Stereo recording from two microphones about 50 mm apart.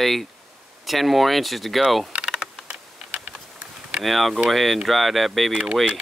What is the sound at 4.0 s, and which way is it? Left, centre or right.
Speech, centre.